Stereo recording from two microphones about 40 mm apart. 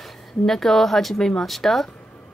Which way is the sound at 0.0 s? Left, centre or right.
Centre.